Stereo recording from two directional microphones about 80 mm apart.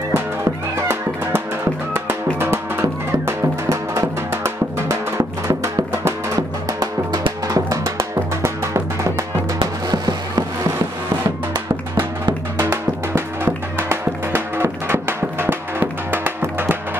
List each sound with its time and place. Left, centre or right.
2.0 s music: right
6.3 s music: right
9.6 s a sound: right
12.5 s music: right